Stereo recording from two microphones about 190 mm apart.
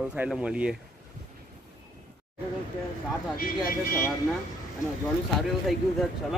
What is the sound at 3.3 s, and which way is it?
Speech, 50° left (ahead or behind).